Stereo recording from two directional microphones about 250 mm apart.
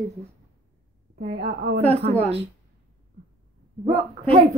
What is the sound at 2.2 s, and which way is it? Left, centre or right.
Speech, right.